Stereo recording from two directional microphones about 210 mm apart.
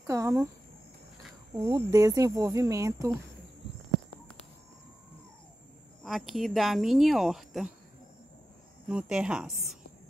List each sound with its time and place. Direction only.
0.0 s a sound: 15° right (ahead or behind)
1.5 s speech: 15° right (ahead or behind)
6.0 s speech: centre (ahead or behind)
8.8 s speech: 5° right (ahead or behind)